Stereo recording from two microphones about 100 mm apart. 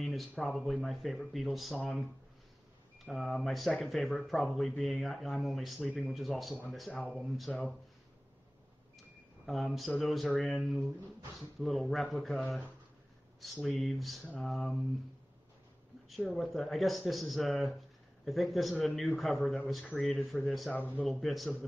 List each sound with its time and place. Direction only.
0.0 s a sound: centre (ahead or behind)
0.4 s speech: centre (ahead or behind)
3.1 s speech: centre (ahead or behind)
9.5 s speech: centre (ahead or behind)
13.7 s speech: centre (ahead or behind)
14.2 s speech: 10° left (ahead or behind)
14.5 s speech: centre (ahead or behind)
16.3 s speech: centre (ahead or behind)
20.7 s speech: 15° left (ahead or behind)
21.0 s speech: centre (ahead or behind)